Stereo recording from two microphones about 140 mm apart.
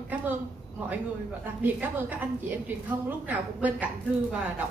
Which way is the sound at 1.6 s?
15° right (ahead or behind).